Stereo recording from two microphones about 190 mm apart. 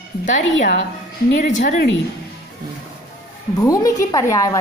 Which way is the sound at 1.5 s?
40° left (ahead or behind).